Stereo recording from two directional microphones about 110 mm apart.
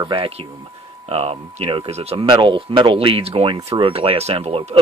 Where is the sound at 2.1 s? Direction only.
50° right (ahead or behind).